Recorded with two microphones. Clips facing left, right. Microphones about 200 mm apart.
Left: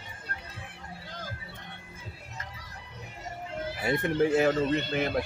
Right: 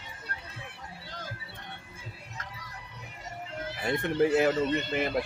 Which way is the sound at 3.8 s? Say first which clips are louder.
Even; 5° left (ahead or behind).